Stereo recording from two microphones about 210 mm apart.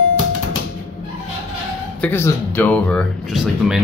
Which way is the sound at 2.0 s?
10° left (ahead or behind).